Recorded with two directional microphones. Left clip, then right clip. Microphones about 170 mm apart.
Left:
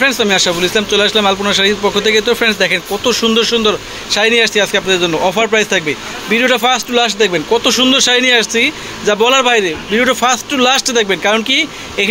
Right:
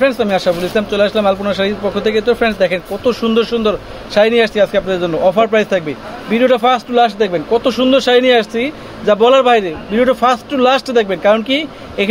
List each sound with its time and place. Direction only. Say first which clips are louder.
0.0 s speech: left 1 dB; 5° right (ahead or behind)